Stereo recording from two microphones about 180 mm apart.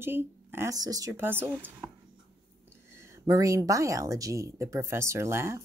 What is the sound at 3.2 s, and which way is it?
Speech, 20° right (ahead or behind).